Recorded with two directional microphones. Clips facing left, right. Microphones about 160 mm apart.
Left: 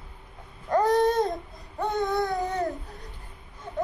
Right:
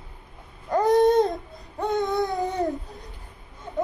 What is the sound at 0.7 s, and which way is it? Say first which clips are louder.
Babbling: right 3 dB; 20° right (ahead or behind).